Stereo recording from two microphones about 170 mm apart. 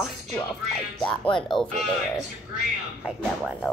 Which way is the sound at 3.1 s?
5° right (ahead or behind).